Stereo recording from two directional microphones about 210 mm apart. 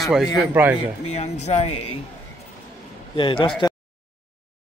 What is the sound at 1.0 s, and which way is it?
Speech, 30° left (ahead or behind).